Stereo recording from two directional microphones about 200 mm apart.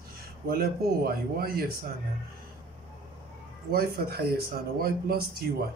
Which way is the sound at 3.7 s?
50° right (ahead or behind).